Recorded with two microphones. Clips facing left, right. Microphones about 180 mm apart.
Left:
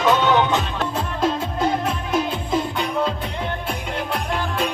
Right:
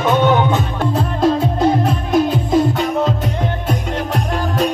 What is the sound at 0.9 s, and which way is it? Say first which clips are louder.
Music: right 8 dB; 40° right (ahead or behind).